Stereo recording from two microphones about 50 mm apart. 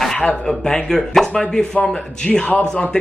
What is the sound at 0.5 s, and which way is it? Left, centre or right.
Speech, centre.